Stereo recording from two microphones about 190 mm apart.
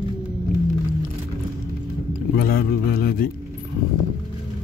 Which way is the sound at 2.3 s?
50° left (ahead or behind).